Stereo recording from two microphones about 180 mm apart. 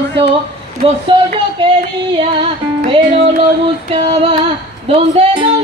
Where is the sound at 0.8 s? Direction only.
30° right (ahead or behind).